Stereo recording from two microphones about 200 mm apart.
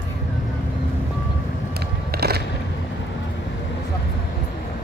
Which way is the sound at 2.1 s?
50° right (ahead or behind).